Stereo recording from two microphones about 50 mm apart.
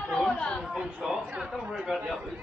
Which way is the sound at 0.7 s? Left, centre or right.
Centre.